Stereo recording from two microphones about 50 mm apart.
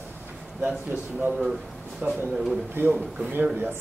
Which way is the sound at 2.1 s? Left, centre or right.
Centre.